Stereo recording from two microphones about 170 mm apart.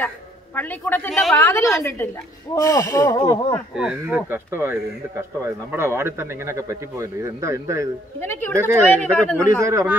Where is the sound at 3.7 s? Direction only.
5° right (ahead or behind).